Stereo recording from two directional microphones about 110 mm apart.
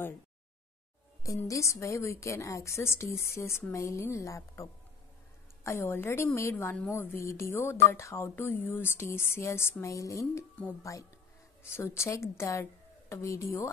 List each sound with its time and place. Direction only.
1.2 s speech: 30° left (ahead or behind)